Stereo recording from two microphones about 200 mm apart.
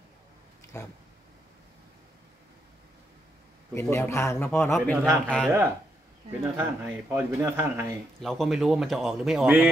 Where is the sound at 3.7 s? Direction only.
10° left (ahead or behind).